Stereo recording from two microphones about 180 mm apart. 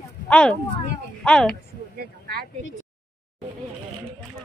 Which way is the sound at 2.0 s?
55° right (ahead or behind).